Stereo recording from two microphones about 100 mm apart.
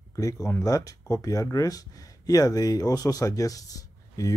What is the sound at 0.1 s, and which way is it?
Speech, 35° left (ahead or behind).